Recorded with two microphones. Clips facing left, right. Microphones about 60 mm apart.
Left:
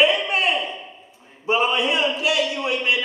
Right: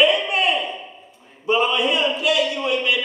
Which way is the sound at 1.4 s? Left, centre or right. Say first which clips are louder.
Right 1 dB; centre.